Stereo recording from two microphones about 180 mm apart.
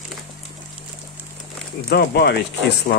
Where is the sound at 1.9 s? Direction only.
65° left (ahead or behind).